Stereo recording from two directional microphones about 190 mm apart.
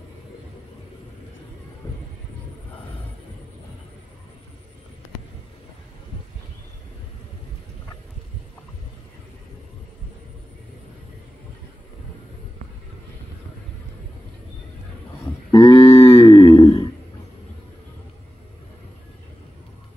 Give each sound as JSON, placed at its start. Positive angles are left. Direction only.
{"t": 15.5, "sound": "cattle", "side_deg": 15}
{"t": 16.3, "sound": "grunt", "side_deg": 20}